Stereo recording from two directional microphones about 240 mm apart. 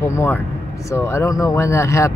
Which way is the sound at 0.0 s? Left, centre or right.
Centre.